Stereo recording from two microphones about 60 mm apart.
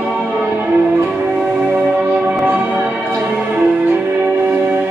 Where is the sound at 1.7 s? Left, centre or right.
Right.